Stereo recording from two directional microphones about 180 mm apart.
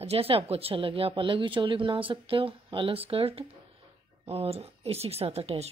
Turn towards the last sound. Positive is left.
turn(degrees=-35)  # may be behind; listen again after turning